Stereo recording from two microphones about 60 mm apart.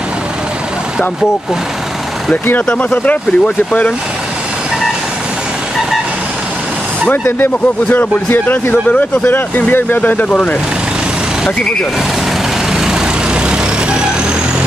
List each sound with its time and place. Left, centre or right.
2.4 s speech: left
7.1 s speech: left
12.7 s vehicle: centre